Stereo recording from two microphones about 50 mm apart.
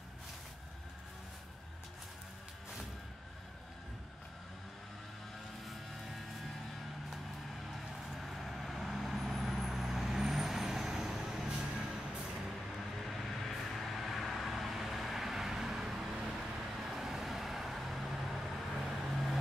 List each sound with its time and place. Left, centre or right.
5.7 s vehicle: centre
7.7 s vehicle: centre
13.1 s vehicle: centre